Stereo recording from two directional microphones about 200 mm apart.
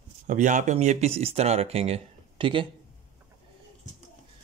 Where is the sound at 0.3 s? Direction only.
40° right (ahead or behind).